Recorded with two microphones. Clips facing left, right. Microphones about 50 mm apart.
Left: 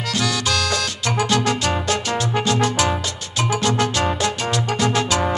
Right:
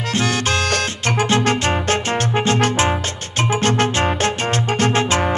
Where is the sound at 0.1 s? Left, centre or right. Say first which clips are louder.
Right 2 dB; right.